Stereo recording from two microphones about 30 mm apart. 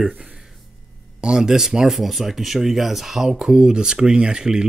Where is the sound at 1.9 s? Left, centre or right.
Centre.